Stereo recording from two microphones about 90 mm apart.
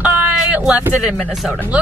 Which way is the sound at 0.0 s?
20° right (ahead or behind).